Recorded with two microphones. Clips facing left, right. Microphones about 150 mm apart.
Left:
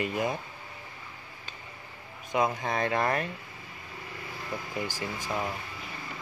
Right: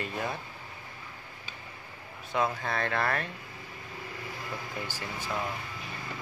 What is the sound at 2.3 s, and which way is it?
Speech, 15° left (ahead or behind).